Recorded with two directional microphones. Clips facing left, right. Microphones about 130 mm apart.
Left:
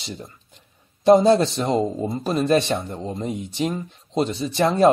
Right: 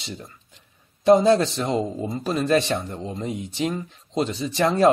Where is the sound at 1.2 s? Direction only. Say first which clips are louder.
Left 2 dB; 25° left (ahead or behind).